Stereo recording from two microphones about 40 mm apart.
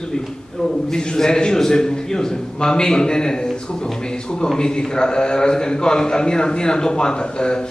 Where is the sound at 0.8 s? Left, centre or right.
Centre.